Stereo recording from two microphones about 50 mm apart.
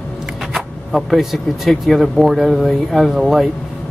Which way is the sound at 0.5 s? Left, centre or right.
Centre.